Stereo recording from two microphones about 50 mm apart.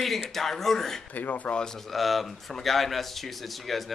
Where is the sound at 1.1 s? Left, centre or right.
Left.